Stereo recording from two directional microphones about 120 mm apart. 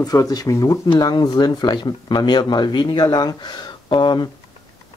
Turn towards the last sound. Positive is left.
turn(degrees=40)  # may be behind; listen again after turning